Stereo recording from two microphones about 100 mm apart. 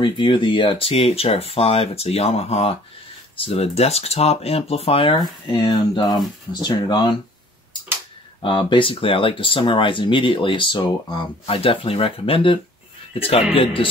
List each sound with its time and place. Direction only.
0.0 s speech: 55° left (ahead or behind); by 2.8 s 85° left
3.3 s speech: 75° left (ahead or behind)
5.2 s speech: 45° left (ahead or behind)
8.4 s speech: 55° left (ahead or behind)
13.1 s a man's voice: 75° left (ahead or behind)